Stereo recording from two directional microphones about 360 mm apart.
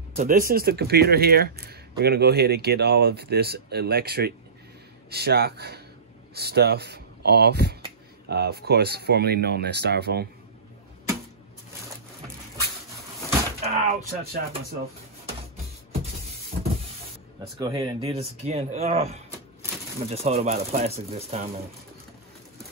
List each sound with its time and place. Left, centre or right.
0.2 s speech: right
13.3 s a sound: centre
17.6 s speech: centre